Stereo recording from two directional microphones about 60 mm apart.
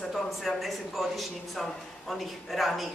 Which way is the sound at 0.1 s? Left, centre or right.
Centre.